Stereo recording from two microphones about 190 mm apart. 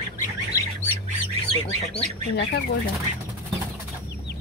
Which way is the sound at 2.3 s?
60° left (ahead or behind).